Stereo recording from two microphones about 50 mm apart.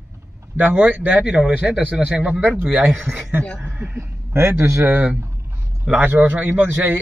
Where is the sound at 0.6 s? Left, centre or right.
Right.